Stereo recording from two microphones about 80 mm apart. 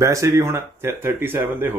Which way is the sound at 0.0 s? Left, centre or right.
Right.